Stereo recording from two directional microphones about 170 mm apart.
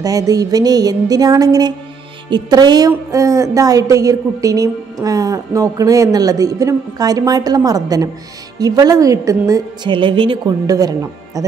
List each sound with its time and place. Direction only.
0.0 s a woman's voice: 20° right (ahead or behind)